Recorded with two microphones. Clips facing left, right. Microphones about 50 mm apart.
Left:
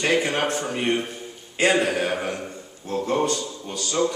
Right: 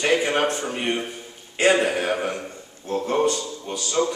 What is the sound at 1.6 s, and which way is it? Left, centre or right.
Speech, right.